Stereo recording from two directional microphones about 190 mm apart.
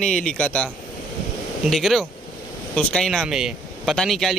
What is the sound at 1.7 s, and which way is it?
Speech, centre (ahead or behind).